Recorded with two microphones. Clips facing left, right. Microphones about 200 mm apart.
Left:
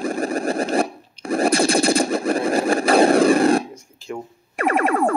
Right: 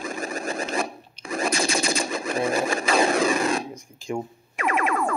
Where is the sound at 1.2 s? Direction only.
55° left (ahead or behind).